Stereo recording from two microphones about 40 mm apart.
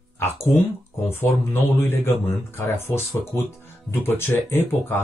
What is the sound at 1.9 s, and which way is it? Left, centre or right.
Speech, left.